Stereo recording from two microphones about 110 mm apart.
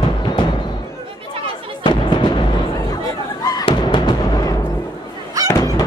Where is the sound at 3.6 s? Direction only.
45° left (ahead or behind).